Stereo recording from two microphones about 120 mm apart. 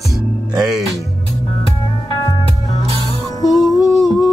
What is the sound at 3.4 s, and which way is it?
Music, 35° left (ahead or behind).